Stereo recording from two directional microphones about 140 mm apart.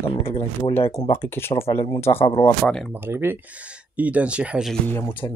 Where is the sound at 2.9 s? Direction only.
15° right (ahead or behind).